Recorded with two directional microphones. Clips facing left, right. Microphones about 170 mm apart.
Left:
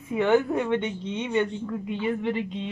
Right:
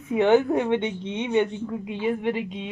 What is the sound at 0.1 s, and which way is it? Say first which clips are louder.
Speech: right 3 dB; 20° right (ahead or behind).